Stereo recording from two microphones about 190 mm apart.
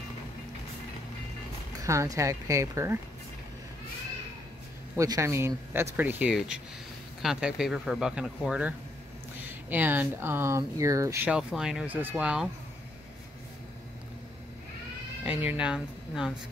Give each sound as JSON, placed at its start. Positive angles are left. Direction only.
{"t": 1.8, "sound": "speech", "side_deg": -15}
{"t": 4.9, "sound": "speech", "side_deg": -15}
{"t": 11.2, "sound": "speech", "side_deg": -5}
{"t": 15.2, "sound": "speech", "side_deg": -5}